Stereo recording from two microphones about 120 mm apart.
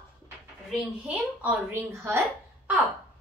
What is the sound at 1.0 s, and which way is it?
A child's voice, 20° right (ahead or behind).